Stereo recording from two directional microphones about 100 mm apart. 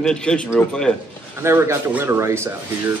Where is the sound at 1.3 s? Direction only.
25° right (ahead or behind).